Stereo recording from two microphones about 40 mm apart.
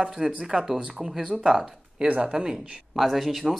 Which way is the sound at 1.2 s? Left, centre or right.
Right.